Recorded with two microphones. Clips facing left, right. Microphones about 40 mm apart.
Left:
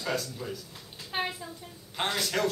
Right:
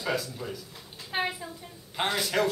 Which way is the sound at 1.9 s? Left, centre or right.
Centre.